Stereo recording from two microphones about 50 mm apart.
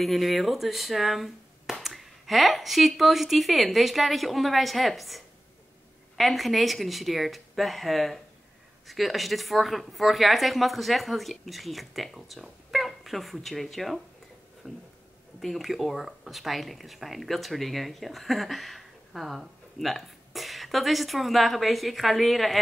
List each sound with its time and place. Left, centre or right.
0.0 s speech: centre
14.6 s a sound: right
15.4 s speech: centre